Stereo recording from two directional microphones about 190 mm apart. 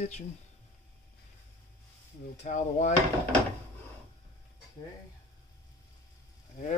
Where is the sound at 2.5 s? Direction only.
40° left (ahead or behind).